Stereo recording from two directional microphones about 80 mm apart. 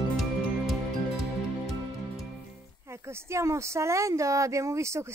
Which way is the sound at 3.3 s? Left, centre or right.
Right.